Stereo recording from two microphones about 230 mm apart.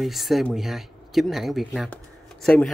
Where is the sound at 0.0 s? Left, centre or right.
Centre.